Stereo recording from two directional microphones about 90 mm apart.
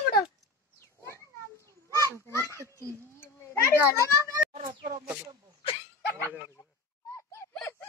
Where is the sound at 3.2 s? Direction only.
30° left (ahead or behind).